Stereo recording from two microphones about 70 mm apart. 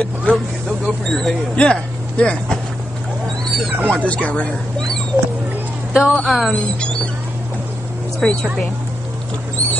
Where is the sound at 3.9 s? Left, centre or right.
Centre.